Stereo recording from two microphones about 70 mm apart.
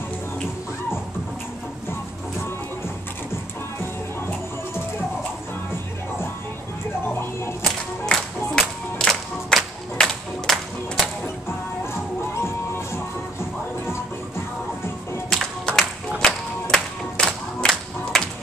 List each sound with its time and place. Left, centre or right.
3.8 s music: left
8.0 s music: centre
10.4 s music: centre
11.8 s music: left
15.7 s clapping: centre
16.2 s music: centre